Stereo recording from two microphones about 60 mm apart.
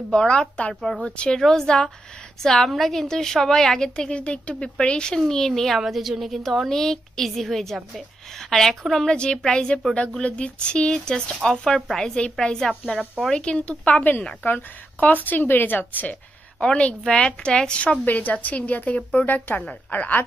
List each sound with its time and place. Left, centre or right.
0.1 s a woman's voice: centre
12.8 s a woman's voice: centre
13.3 s a woman's voice: centre
16.5 s a woman's voice: centre